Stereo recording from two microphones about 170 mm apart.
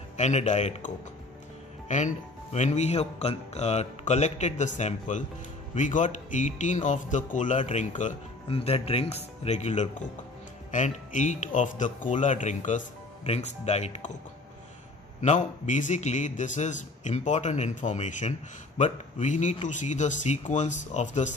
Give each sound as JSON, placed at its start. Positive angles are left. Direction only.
{"t": 0.2, "sound": "speech", "side_deg": 45}
{"t": 8.5, "sound": "speech", "side_deg": 35}
{"t": 15.1, "sound": "speech", "side_deg": 45}